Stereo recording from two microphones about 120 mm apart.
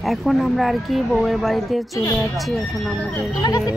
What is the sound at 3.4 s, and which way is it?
Speech, 35° left (ahead or behind).